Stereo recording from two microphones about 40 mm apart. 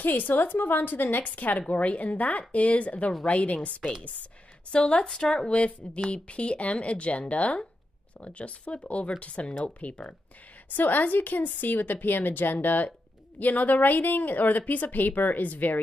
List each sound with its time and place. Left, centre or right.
0.0 s a woman's voice: left
1.2 s a woman's voice: left; by 5.5 s centre
5.5 s speech: left
10.7 s a woman's voice: left